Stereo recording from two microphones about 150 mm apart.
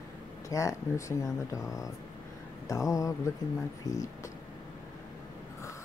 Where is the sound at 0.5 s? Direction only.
20° left (ahead or behind).